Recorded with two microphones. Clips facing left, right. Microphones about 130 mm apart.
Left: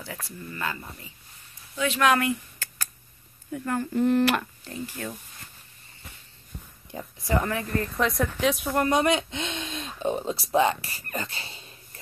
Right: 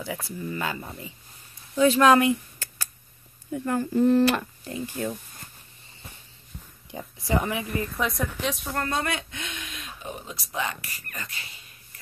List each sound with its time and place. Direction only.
0.0 s speech: 10° right (ahead or behind)
1.8 s speech: 35° right (ahead or behind)
2.1 s a sound: 15° right (ahead or behind)
3.5 s speech: 20° right (ahead or behind)
6.9 s speech: 15° right (ahead or behind)
8.0 s speech: centre (ahead or behind)
8.7 s speech: 20° left (ahead or behind)